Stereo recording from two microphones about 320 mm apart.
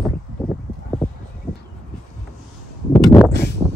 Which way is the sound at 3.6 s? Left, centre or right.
Centre.